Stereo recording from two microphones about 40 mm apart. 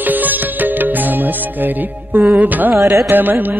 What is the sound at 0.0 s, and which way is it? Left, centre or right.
Music, right.